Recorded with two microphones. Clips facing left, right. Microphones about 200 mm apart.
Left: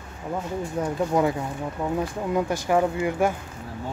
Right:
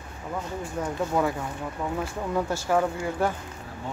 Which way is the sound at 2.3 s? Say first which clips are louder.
Left 2 dB; 15° left (ahead or behind).